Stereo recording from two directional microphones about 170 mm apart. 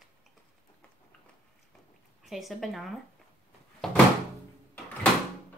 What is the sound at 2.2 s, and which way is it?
Speech, centre (ahead or behind).